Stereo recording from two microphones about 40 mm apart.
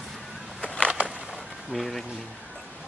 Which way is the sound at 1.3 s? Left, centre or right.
Centre.